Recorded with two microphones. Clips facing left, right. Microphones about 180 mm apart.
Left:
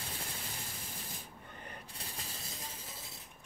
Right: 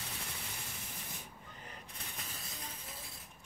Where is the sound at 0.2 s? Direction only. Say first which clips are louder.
Left 2 dB; 35° left (ahead or behind).